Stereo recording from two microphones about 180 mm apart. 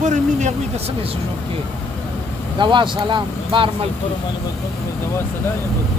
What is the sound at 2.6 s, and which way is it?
Speech, 25° right (ahead or behind).